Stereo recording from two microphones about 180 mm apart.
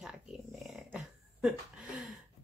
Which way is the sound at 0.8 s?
5° right (ahead or behind).